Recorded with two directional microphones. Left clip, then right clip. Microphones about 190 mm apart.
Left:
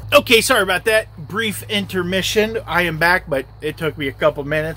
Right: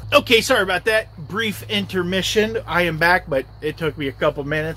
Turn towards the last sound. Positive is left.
turn(degrees=5)  # may be behind; listen again after turning